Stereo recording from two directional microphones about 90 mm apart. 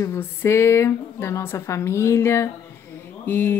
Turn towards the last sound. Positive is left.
turn(degrees=20)  # may be behind; listen again after turning